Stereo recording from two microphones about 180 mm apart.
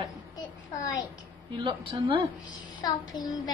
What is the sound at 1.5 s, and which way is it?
Speech, 25° right (ahead or behind).